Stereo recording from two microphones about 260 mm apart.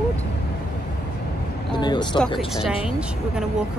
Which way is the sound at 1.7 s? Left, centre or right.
Centre.